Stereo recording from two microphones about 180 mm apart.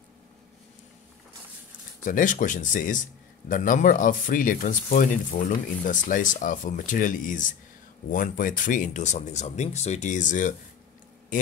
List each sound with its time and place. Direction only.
2.0 s speech: 45° left (ahead or behind)